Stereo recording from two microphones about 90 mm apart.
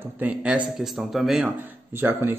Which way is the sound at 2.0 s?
25° right (ahead or behind).